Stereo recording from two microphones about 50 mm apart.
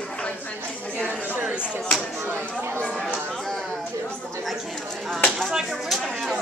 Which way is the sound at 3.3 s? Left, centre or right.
Centre.